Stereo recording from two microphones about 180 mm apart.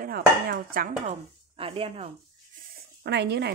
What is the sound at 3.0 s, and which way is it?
Speech, 70° right (ahead or behind).